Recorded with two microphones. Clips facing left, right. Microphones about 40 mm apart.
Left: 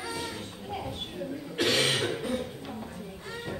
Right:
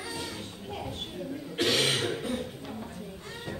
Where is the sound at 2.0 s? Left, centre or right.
Left.